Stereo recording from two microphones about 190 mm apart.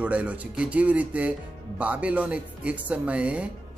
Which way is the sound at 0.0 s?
5° right (ahead or behind).